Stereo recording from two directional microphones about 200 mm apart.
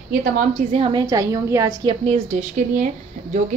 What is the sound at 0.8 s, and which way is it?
A woman's voice, 20° right (ahead or behind).